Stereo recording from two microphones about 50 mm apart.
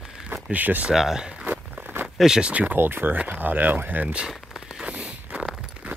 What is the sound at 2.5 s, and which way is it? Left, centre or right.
Speech, right.